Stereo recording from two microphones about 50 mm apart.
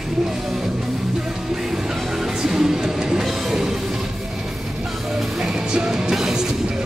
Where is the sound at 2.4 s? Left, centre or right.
Centre.